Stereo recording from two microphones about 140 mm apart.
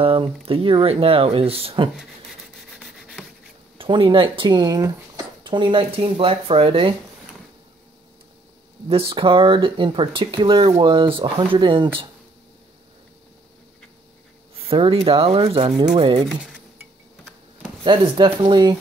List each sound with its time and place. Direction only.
0.0 s speech: 40° right (ahead or behind)
2.0 s rub: centre (ahead or behind)
3.7 s speech: 40° right (ahead or behind)
8.8 s speech: 40° right (ahead or behind)
14.5 s speech: 40° right (ahead or behind)
16.3 s speech: centre (ahead or behind)
17.8 s speech: 35° right (ahead or behind)